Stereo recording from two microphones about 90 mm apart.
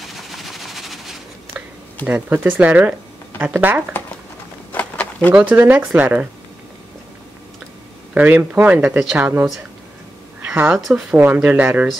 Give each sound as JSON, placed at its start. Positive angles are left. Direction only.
{"t": 0.0, "sound": "a sound", "side_deg": 0}
{"t": 2.0, "sound": "speech", "side_deg": -15}
{"t": 4.7, "sound": "a sound", "side_deg": 15}
{"t": 5.3, "sound": "speech", "side_deg": -20}
{"t": 8.1, "sound": "a woman's voice", "side_deg": -20}
{"t": 10.9, "sound": "speech", "side_deg": -5}